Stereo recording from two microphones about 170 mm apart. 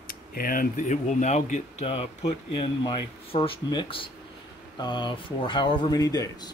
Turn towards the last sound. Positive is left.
turn(degrees=20)  # may be behind; listen again after turning